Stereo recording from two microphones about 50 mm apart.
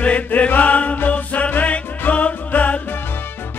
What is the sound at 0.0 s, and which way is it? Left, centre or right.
Chant, left.